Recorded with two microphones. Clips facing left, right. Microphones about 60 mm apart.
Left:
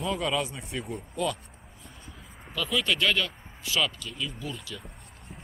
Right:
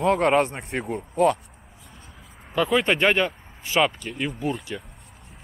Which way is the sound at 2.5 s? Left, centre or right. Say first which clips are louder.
Right 7 dB; right.